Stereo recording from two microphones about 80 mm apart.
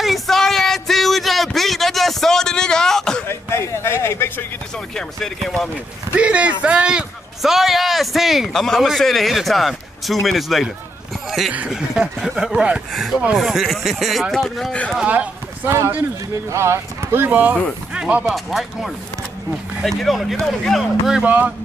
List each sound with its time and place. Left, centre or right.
0.0 s a sound: centre
3.3 s a sound: left
4.9 s a man's voice: centre
6.1 s a man's voice: centre
11.2 s a sound: centre
11.7 s a man's voice: centre
14.7 s speech: centre
15.0 s speech: centre
16.4 s speech: right; by 18.2 s centre
18.2 s a man's voice: centre